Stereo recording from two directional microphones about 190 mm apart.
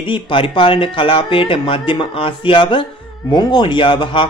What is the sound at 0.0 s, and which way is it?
Speech, 25° left (ahead or behind).